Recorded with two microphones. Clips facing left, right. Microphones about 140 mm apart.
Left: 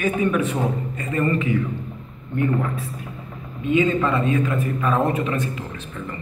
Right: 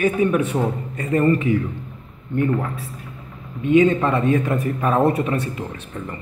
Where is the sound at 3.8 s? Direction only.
40° right (ahead or behind).